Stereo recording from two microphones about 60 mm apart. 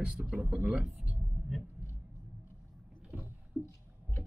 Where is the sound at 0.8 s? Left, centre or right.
Centre.